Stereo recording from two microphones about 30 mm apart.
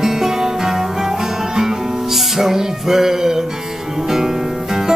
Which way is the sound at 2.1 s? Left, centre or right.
Centre.